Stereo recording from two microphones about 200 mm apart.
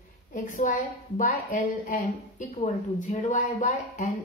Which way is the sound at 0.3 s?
40° left (ahead or behind).